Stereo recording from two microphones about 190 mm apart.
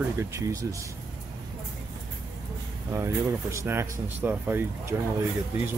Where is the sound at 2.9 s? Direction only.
15° right (ahead or behind).